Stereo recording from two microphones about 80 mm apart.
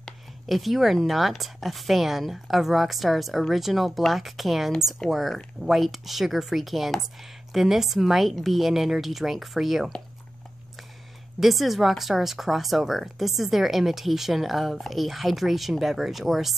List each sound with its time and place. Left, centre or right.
0.5 s speech: centre
11.3 s speech: centre